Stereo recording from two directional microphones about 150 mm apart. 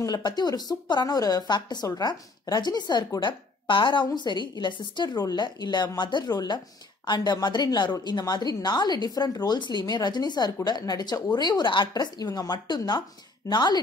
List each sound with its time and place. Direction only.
0.0 s a woman's voice: 25° left (ahead or behind)